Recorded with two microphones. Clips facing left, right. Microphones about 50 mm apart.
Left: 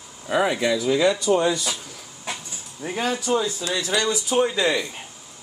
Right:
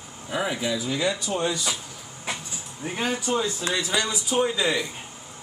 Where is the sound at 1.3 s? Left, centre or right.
Left.